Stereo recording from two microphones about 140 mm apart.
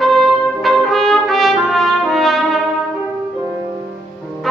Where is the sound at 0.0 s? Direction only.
Centre (ahead or behind).